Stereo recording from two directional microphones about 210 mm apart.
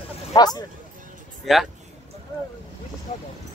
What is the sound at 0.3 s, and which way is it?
Speech, 20° left (ahead or behind).